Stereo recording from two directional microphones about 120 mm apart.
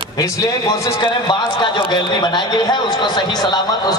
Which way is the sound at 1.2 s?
40° left (ahead or behind).